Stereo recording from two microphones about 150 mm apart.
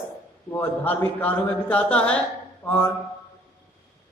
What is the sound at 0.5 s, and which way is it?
A man's voice, 15° left (ahead or behind).